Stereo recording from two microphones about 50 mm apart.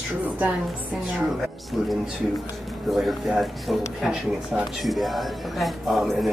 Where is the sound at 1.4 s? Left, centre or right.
Centre.